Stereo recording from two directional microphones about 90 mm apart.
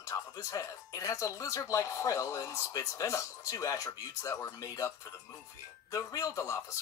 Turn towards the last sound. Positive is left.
turn(degrees=30)  # may be behind; listen again after turning